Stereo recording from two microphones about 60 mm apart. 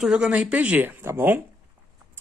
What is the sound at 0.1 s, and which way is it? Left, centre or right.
Speech, centre.